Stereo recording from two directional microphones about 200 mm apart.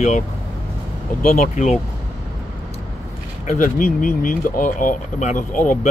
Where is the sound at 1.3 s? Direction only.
35° left (ahead or behind).